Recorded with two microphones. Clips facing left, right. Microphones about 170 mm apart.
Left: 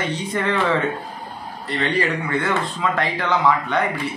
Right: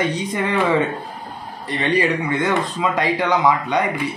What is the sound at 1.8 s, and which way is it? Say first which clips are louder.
Speech: right 3 dB; 15° right (ahead or behind).